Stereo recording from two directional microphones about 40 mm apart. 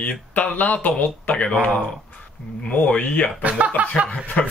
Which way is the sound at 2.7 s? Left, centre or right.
Left.